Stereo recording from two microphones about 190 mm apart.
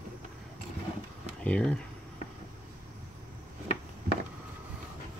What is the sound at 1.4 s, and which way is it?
Speech, 5° left (ahead or behind).